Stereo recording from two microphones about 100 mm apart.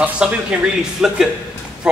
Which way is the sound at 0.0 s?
10° right (ahead or behind).